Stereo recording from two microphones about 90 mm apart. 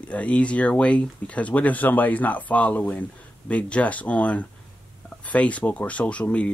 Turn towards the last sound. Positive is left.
turn(degrees=15)  # may be behind; listen again after turning